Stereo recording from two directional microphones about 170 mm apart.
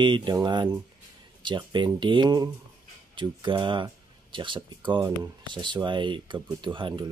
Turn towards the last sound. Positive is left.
turn(degrees=-30)  # may be behind; listen again after turning